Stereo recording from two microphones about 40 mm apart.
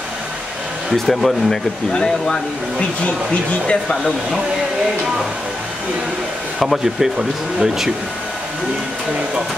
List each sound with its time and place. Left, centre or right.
0.9 s speech: centre
1.9 s speech: left
6.6 s speech: centre